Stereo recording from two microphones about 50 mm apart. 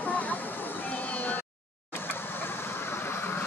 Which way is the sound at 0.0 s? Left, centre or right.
Left.